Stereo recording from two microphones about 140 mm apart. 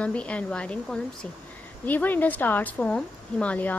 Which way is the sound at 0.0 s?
10° left (ahead or behind).